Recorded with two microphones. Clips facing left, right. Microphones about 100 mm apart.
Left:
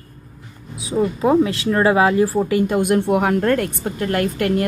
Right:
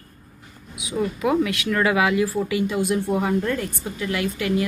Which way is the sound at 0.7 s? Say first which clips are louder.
Left 5 dB; 30° left (ahead or behind).